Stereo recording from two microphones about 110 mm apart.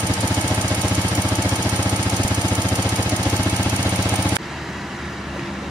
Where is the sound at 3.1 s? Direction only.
15° left (ahead or behind).